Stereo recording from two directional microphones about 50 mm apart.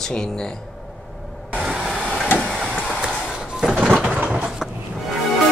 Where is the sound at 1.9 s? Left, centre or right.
Centre.